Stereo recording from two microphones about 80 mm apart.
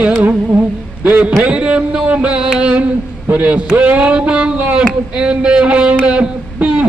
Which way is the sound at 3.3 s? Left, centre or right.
Centre.